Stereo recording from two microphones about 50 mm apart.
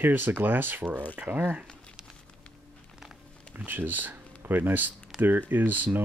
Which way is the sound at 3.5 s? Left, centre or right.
Right.